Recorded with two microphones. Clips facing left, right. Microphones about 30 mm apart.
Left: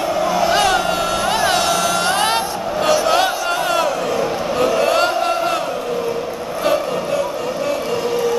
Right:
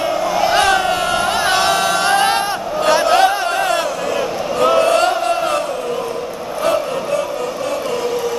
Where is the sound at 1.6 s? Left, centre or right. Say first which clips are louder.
Right 2 dB; right.